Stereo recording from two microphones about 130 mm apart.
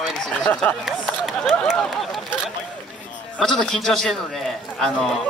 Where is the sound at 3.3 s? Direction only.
5° left (ahead or behind).